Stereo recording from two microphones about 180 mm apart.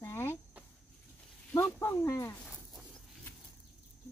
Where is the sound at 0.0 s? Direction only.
15° left (ahead or behind).